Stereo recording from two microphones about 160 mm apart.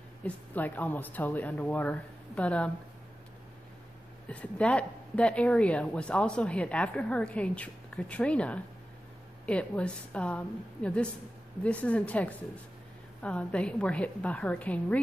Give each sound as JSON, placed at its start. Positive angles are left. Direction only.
{"t": 0.2, "sound": "a woman's voice", "side_deg": 10}
{"t": 4.3, "sound": "a woman's voice", "side_deg": 10}